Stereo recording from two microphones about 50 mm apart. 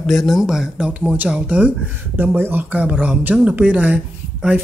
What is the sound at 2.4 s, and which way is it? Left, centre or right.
Speech, right.